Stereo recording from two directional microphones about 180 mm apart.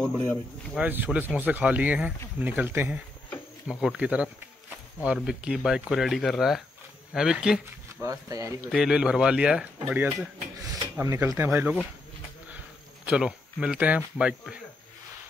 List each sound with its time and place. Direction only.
0.7 s speech: 10° right (ahead or behind)
8.0 s speech: 20° right (ahead or behind)
8.7 s speech: 5° right (ahead or behind)